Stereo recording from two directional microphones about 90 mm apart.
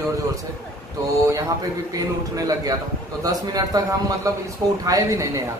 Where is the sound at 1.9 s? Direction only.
40° right (ahead or behind).